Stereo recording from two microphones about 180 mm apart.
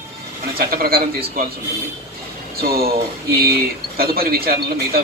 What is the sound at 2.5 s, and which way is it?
A man's voice, 55° right (ahead or behind).